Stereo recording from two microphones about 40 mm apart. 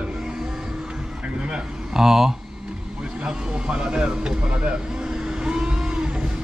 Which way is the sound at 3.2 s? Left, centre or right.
Centre.